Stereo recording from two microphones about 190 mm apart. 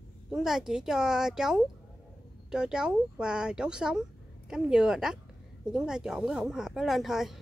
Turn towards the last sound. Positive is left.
turn(degrees=0)  # may be behind; listen again after turning